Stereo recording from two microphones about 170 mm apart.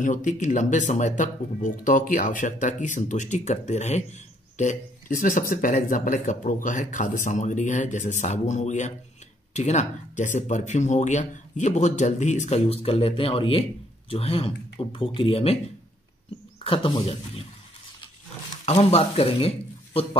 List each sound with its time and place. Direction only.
0.0 s speech: 50° left (ahead or behind)
16.6 s speech: 30° left (ahead or behind)
18.7 s a man's voice: 40° left (ahead or behind)